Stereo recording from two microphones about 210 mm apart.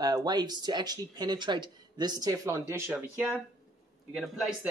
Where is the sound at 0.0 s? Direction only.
20° right (ahead or behind).